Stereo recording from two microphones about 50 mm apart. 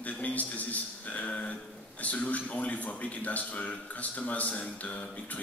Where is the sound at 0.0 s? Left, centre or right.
Left.